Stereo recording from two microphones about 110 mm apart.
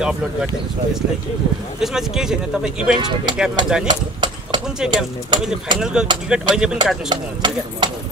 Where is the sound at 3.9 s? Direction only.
45° right (ahead or behind).